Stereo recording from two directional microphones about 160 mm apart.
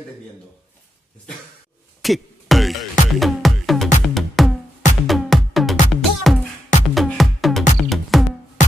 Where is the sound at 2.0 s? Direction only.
Centre (ahead or behind).